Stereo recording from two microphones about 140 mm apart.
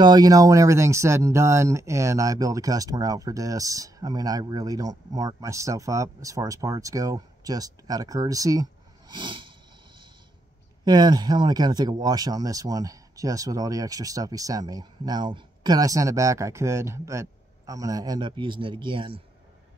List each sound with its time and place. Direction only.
0.0 s speech: 30° right (ahead or behind)
10.9 s speech: 30° right (ahead or behind)